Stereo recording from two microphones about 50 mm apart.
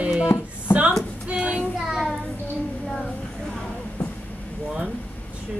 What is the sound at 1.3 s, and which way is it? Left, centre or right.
Child singing, centre.